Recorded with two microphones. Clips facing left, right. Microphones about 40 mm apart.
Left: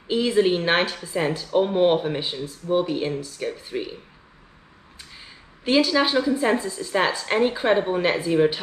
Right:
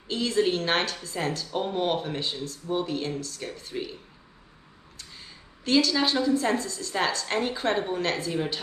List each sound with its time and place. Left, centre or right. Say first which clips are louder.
0.1 s speech: left 5 dB; centre
4.9 s a woman's voice: left 2 dB; centre